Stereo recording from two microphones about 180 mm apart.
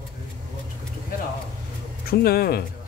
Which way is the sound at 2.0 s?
55° left (ahead or behind).